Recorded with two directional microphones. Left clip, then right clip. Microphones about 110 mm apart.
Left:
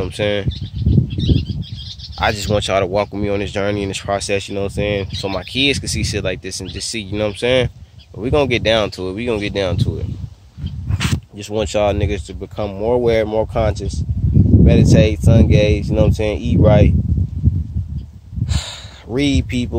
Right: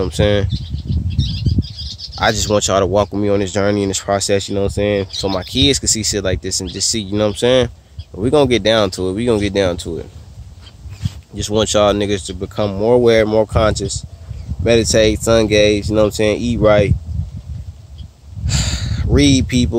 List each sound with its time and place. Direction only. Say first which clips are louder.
0.0 s speech: right 3 dB; 30° right (ahead or behind)
2.1 s speech: right 3 dB; 20° right (ahead or behind)
11.3 s speech: right 5 dB; 20° right (ahead or behind)
18.5 s a sound: right 6 dB; 10° right (ahead or behind)